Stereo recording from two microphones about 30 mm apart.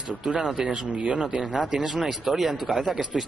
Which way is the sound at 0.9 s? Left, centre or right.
Right.